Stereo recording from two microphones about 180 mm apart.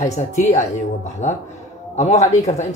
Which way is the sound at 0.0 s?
40° left (ahead or behind).